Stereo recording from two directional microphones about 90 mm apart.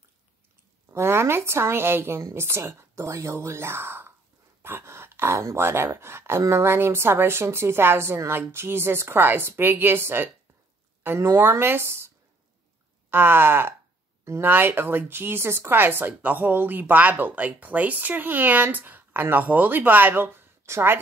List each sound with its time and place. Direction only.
0.9 s speech: 30° right (ahead or behind)
13.1 s speech: 25° right (ahead or behind)